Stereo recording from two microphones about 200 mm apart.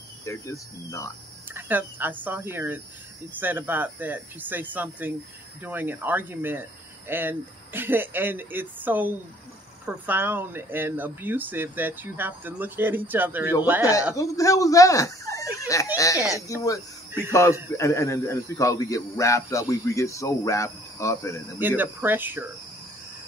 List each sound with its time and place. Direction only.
0.2 s speech: 15° left (ahead or behind)
1.5 s speech: 10° right (ahead or behind)
14.1 s speech: 15° left (ahead or behind)
21.5 s speech: 10° right (ahead or behind)